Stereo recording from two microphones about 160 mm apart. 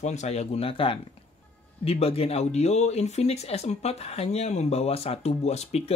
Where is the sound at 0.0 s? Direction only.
45° left (ahead or behind).